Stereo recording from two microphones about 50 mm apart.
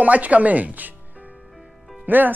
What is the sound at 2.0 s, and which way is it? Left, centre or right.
Speech, right.